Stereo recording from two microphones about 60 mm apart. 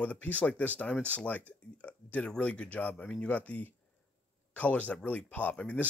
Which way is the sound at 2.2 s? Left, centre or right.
Centre.